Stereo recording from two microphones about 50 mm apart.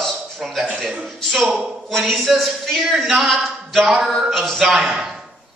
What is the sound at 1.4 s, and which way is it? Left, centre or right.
Speech, centre.